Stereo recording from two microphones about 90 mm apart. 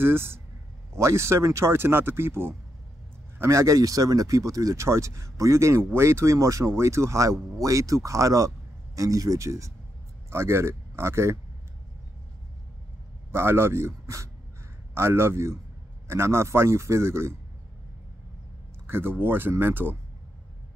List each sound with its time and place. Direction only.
0.0 s speech: 25° right (ahead or behind)
13.3 s speech: 30° right (ahead or behind)
18.9 s speech: 25° right (ahead or behind)